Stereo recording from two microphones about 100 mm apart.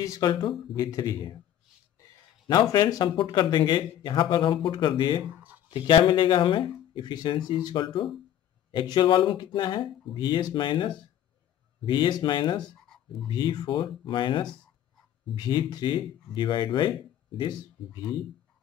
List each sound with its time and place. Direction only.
0.0 s speech: 35° left (ahead or behind)
0.3 s speech: 50° left (ahead or behind)
0.7 s speech: 35° left (ahead or behind)
2.4 s speech: 45° left (ahead or behind)
5.3 s a sound: 20° right (ahead or behind)
5.7 s speech: 55° left (ahead or behind)
12.6 s a sound: 5° left (ahead or behind)
13.3 s speech: 50° left (ahead or behind)
17.4 s speech: 45° left (ahead or behind)